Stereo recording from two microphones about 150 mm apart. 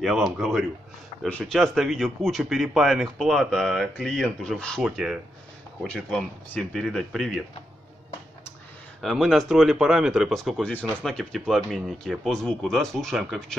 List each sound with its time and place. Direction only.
0.0 s speech: centre (ahead or behind)
4.8 s speech: 5° right (ahead or behind)
9.0 s speech: centre (ahead or behind)